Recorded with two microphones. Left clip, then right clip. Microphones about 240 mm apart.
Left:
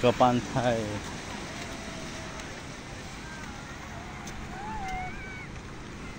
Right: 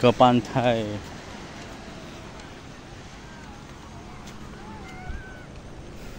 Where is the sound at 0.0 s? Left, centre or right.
Right.